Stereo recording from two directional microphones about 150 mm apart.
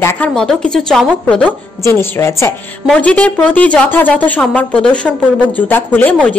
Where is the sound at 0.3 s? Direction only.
5° left (ahead or behind).